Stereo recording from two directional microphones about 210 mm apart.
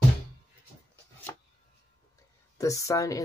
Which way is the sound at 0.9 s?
10° left (ahead or behind).